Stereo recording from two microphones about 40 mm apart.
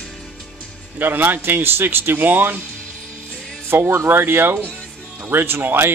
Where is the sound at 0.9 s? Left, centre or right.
Right.